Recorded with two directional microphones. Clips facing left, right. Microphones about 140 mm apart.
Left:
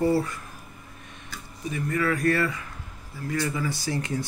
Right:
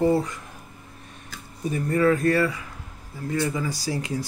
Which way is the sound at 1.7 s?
30° right (ahead or behind).